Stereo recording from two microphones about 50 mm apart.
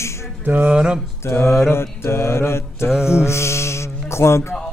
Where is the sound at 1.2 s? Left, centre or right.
Left.